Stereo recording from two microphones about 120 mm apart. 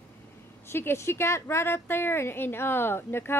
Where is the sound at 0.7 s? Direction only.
20° left (ahead or behind).